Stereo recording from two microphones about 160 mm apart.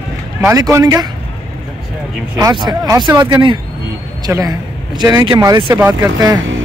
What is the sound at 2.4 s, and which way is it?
A man's voice, 25° right (ahead or behind).